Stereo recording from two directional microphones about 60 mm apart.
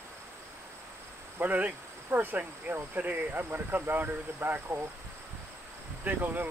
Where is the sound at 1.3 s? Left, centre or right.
Right.